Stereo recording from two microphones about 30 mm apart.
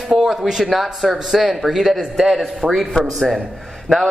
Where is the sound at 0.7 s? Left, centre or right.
Centre.